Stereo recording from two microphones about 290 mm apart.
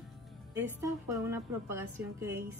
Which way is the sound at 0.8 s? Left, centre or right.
Centre.